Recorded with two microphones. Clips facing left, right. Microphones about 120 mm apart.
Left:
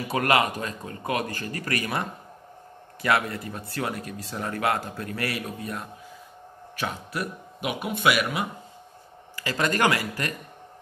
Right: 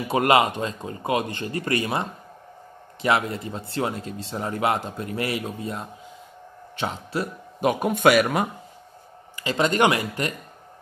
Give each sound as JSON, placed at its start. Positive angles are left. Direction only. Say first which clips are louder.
{"t": 0.1, "sound": "speech", "louder": "right 4 dB", "side_deg": -25}
{"t": 7.6, "sound": "a man's voice", "louder": "right 6 dB", "side_deg": -45}
{"t": 9.4, "sound": "speech", "louder": "right 4 dB", "side_deg": -20}